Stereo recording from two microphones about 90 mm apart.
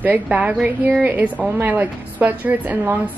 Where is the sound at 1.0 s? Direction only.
20° right (ahead or behind).